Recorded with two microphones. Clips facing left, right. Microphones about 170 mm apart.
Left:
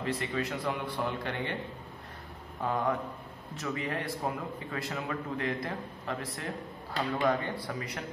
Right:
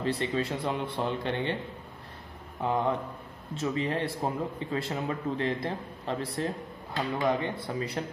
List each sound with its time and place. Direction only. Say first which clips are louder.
0.0 s a man's voice: right 3 dB; 30° right (ahead or behind)
2.6 s a man's voice: right 2 dB; 20° right (ahead or behind)